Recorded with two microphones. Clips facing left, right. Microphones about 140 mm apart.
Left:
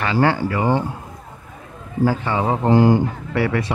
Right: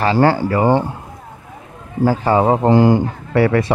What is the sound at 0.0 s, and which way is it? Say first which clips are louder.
Speech: right 4 dB; 35° right (ahead or behind).